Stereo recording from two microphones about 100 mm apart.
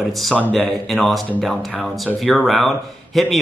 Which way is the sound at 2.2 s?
Centre (ahead or behind).